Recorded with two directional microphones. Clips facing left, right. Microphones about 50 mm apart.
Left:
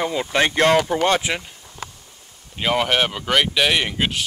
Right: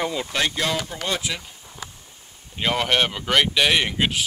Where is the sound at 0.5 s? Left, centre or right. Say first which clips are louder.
Left 9 dB; left.